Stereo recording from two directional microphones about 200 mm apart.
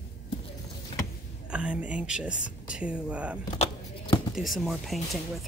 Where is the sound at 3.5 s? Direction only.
25° left (ahead or behind).